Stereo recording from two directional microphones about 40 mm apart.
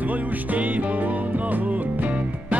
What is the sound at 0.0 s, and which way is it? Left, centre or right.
Music, right.